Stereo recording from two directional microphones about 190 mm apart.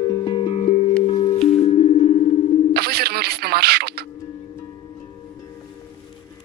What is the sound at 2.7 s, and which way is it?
Music, 55° right (ahead or behind).